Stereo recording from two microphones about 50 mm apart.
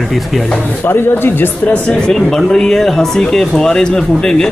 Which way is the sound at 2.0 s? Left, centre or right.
Centre.